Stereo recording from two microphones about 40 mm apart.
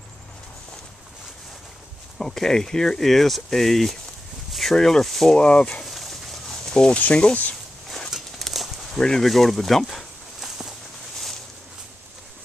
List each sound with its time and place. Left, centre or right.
2.1 s speech: centre
4.5 s a sound: centre
4.7 s speech: centre
5.4 s speech: left
5.9 s a sound: centre
6.5 s a sound: centre
7.0 s speech: left
8.1 s horse: centre
8.9 s speech: centre
9.2 s speech: centre